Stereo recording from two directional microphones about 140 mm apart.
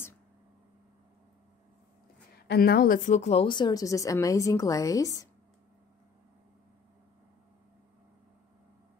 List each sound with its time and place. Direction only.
2.6 s a woman's voice: 85° left
3.2 s speech: 50° left (ahead or behind)
3.4 s a woman's voice: 30° left (ahead or behind)